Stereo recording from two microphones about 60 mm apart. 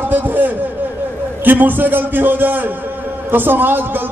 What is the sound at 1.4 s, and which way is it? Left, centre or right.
A man's voice, right.